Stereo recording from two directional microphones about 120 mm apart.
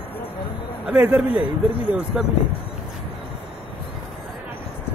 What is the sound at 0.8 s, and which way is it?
A man's voice, 15° right (ahead or behind).